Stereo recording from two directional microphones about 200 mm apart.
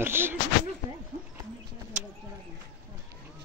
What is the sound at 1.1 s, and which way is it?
Horse, 40° right (ahead or behind).